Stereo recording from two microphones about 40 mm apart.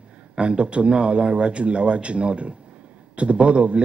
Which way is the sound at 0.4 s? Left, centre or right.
Right.